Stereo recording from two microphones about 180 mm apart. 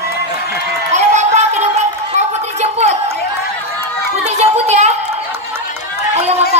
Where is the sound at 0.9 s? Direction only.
40° right (ahead or behind).